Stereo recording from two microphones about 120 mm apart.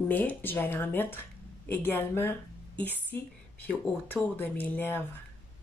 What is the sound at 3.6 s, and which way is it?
Speech, 15° left (ahead or behind).